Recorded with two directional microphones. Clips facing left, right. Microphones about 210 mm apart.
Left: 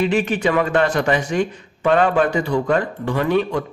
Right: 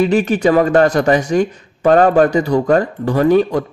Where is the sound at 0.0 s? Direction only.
40° right (ahead or behind).